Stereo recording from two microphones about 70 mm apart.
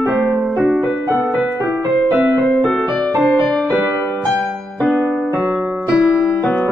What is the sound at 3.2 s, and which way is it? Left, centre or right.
Music, centre.